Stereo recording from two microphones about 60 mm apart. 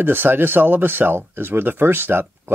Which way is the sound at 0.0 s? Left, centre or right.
Right.